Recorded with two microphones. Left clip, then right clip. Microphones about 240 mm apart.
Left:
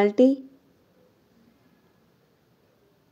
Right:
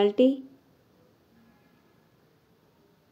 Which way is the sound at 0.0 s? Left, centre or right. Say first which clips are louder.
Left 3 dB; left.